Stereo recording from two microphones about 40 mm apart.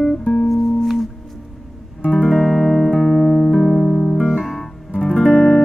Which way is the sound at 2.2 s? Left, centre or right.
Centre.